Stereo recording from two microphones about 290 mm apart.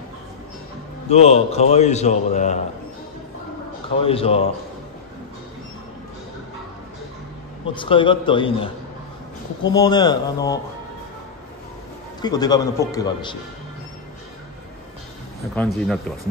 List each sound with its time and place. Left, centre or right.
1.0 s a man's voice: left
4.0 s a man's voice: centre
7.7 s speech: centre
9.7 s speech: centre
12.2 s speech: centre
15.5 s speech: centre